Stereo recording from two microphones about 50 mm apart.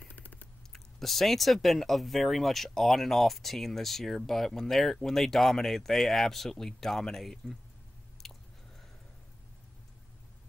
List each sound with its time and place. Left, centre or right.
0.1 s a sound: left
0.7 s speech: centre
8.2 s chewing: centre